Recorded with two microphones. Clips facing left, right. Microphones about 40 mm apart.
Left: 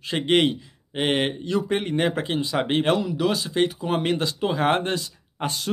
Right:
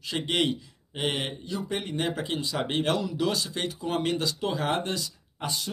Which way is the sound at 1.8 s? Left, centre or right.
Left.